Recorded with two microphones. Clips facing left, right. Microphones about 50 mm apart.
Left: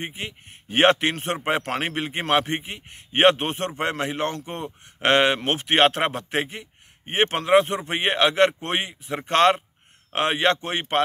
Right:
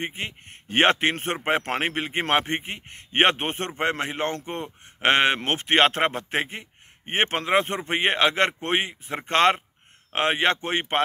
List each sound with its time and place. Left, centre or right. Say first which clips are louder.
0.0 s a man's voice: right 1 dB; right